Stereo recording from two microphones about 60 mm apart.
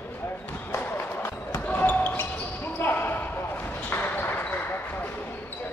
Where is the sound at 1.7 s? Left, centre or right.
Left.